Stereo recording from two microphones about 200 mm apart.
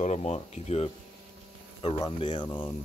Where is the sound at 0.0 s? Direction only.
30° left (ahead or behind).